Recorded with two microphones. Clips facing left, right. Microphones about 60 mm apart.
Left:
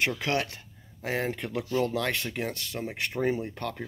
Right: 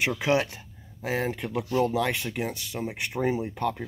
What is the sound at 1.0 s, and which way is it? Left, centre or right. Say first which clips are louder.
Speech: right 2 dB; centre.